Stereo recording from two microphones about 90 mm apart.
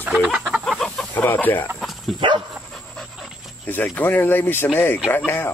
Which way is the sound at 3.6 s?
20° left (ahead or behind).